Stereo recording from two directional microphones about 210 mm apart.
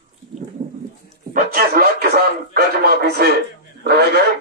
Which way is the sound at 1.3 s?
45° right (ahead or behind).